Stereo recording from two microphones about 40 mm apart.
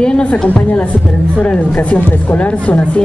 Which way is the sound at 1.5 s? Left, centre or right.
Left.